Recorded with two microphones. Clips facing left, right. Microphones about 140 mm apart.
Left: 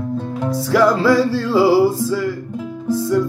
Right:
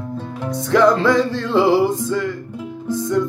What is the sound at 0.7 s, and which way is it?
Music, 5° left (ahead or behind).